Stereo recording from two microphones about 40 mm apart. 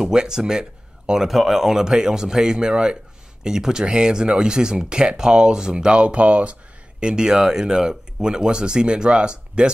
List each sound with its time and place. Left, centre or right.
0.0 s speech: centre
1.3 s a man's voice: centre; by 6.5 s right
7.0 s speech: right